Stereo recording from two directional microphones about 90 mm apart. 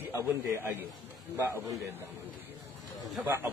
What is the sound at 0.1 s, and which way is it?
Speech, 30° right (ahead or behind).